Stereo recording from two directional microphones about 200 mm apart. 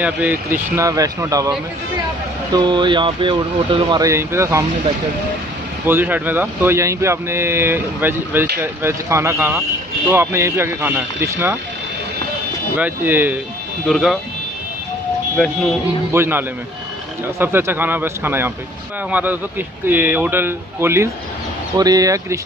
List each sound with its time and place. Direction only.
0.0 s speech: 10° right (ahead or behind)
2.5 s speech: 25° right (ahead or behind)
5.9 s speech: 10° right (ahead or behind)
12.7 s speech: 10° right (ahead or behind)
15.4 s speech: 5° left (ahead or behind)
16.1 s speech: 10° right (ahead or behind)